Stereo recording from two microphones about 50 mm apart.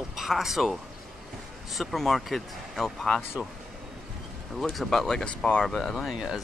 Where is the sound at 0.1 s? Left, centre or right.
Centre.